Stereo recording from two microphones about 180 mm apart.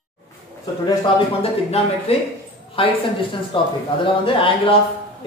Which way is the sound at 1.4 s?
35° left (ahead or behind).